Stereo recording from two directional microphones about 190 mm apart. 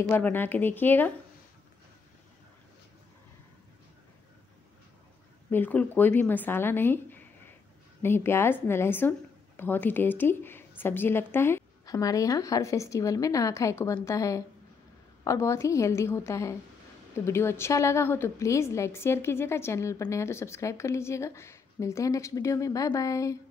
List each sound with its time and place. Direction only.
0.1 s a woman's voice: 10° left (ahead or behind)
5.5 s a woman's voice: 10° left (ahead or behind)